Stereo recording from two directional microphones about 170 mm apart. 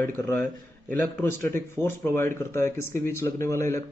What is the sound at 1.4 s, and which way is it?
Speech, 15° left (ahead or behind).